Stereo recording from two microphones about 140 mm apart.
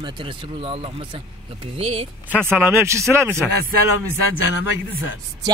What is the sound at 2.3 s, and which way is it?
Speech, 15° right (ahead or behind).